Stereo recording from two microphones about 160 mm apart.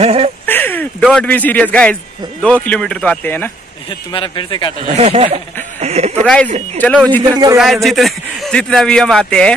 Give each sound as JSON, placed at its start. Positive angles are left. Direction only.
{"t": 0.0, "sound": "a sound", "side_deg": -40}
{"t": 0.5, "sound": "a sound", "side_deg": 10}
{"t": 1.0, "sound": "speech", "side_deg": 5}
{"t": 4.1, "sound": "speech", "side_deg": 30}
{"t": 4.9, "sound": "speech", "side_deg": -40}
{"t": 6.2, "sound": "speech", "side_deg": 5}
{"t": 7.2, "sound": "a man's voice", "side_deg": -25}
{"t": 7.5, "sound": "a man's voice", "side_deg": 0}